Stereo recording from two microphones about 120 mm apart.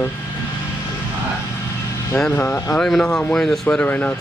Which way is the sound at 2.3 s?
20° left (ahead or behind).